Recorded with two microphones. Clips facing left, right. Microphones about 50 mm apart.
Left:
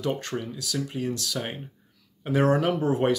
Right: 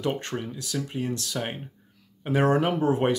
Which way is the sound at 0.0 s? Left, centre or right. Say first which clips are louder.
Even; right.